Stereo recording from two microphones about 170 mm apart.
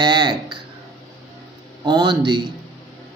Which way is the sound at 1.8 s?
25° right (ahead or behind).